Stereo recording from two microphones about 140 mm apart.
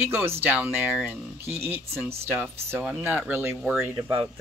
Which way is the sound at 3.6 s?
10° right (ahead or behind).